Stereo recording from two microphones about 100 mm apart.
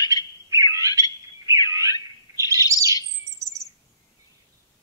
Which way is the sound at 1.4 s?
35° right (ahead or behind).